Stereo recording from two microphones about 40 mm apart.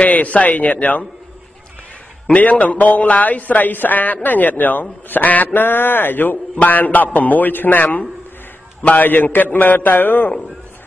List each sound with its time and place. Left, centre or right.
0.0 s a man's voice: left
2.6 s a woman's voice: left
6.5 s a woman's voice: left